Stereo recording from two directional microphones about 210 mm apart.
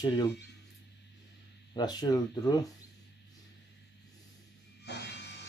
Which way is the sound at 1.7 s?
20° left (ahead or behind).